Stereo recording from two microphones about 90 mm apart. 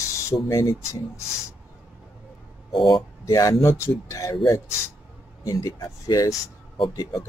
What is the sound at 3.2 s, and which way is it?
Speech, 35° left (ahead or behind).